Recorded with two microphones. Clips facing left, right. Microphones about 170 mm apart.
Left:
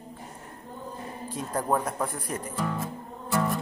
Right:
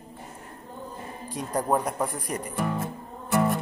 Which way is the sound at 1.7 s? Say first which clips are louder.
Right 1 dB; 10° right (ahead or behind).